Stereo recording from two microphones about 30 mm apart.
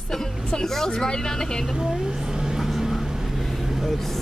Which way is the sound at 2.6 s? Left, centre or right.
Centre.